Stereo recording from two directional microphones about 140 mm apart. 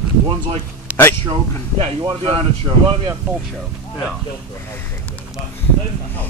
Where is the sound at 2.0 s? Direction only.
40° right (ahead or behind).